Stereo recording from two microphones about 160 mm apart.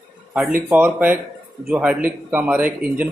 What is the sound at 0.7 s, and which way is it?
Speech, 10° right (ahead or behind).